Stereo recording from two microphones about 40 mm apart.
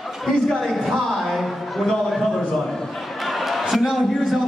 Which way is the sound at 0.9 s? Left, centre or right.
Centre.